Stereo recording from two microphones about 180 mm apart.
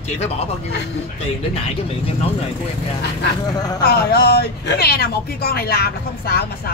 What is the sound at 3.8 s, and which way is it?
Speech, 60° left (ahead or behind).